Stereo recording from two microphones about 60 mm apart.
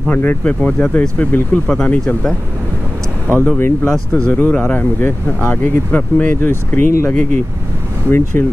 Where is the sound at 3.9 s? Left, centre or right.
Centre.